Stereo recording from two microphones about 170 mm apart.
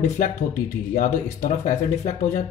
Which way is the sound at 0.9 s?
45° left (ahead or behind).